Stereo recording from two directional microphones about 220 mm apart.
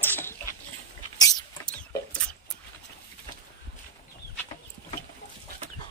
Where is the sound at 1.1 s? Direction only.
15° left (ahead or behind).